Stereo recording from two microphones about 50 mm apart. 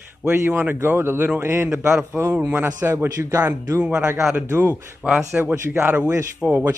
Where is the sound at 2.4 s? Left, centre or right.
Right.